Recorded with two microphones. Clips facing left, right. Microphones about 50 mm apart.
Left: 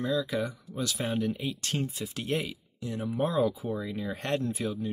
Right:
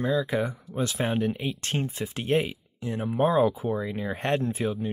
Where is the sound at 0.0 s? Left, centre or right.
Right.